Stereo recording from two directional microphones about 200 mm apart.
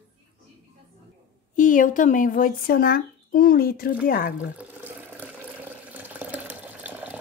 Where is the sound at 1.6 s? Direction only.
40° left (ahead or behind).